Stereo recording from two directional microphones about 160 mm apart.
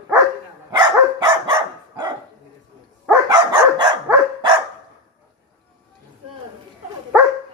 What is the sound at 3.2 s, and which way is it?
Dog, 25° right (ahead or behind).